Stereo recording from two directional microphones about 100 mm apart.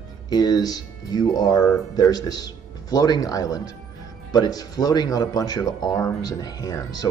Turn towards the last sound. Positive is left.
turn(degrees=40)  # may be behind; listen again after turning